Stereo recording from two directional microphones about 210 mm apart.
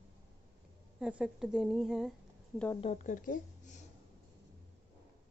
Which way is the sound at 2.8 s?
35° left (ahead or behind).